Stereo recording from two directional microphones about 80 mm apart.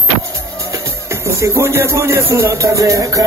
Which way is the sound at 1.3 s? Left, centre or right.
Right.